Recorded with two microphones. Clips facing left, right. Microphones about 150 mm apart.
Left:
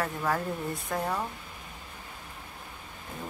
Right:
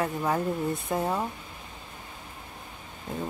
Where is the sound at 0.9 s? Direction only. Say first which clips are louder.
Right 1 dB; 20° right (ahead or behind).